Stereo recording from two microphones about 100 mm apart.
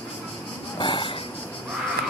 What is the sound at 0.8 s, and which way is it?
Wheeze, 55° left (ahead or behind).